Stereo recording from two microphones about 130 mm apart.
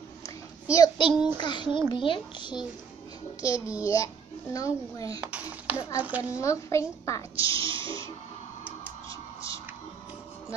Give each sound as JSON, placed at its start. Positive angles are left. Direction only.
{"t": 0.2, "sound": "a sound", "side_deg": 25}
{"t": 1.4, "sound": "a child's voice", "side_deg": 35}
{"t": 3.4, "sound": "a child's voice", "side_deg": 25}
{"t": 5.2, "sound": "a child's voice", "side_deg": -10}
{"t": 6.3, "sound": "a child's voice", "side_deg": 25}
{"t": 7.3, "sound": "music", "side_deg": -45}
{"t": 9.1, "sound": "a sound", "side_deg": 25}